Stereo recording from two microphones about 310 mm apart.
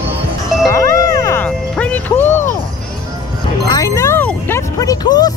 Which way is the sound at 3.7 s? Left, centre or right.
Centre.